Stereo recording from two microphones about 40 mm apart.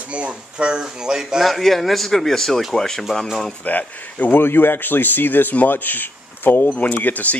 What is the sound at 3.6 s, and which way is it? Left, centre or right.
Speech, left.